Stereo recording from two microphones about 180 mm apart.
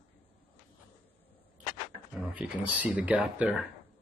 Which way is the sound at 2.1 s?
5° right (ahead or behind).